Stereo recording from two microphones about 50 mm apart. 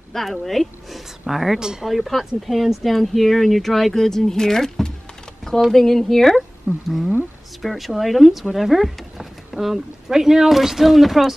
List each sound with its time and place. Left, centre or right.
0.1 s a woman's voice: centre
1.9 s speech: centre
6.7 s speech: centre
7.6 s speech: centre